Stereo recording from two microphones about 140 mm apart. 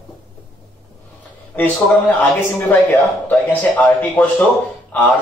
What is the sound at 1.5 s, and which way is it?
A man's voice, 10° left (ahead or behind).